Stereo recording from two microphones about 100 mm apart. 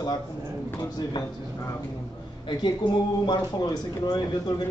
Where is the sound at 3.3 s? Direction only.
40° left (ahead or behind).